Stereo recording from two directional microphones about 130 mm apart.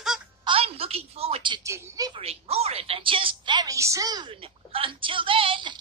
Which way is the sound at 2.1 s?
50° right (ahead or behind).